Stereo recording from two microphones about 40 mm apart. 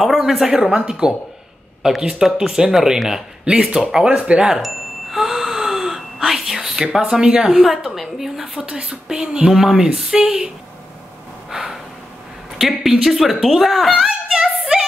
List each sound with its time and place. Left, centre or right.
0.0 s speech: centre
4.6 s a sound: centre
6.9 s speech: centre
11.5 s gasp: centre
12.5 s speech: centre